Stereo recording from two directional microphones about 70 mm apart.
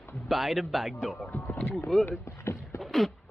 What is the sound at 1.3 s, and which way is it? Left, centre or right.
Speech, left.